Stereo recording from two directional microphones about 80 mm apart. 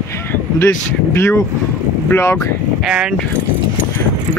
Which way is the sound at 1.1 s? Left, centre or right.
Left.